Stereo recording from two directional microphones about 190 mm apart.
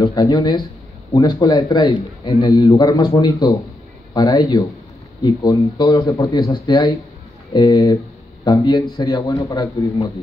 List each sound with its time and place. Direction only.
0.0 s a man's voice: 20° left (ahead or behind)